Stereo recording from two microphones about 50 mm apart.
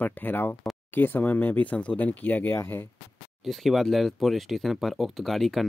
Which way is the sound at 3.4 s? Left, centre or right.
Centre.